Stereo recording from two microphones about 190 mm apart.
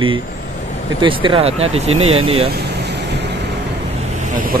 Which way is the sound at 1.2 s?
30° right (ahead or behind).